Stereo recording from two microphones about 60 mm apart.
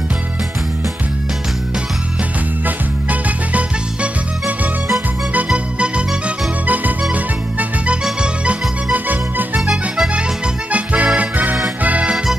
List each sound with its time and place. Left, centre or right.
2.6 s music: right
10.7 s accordion: right
11.1 s music: right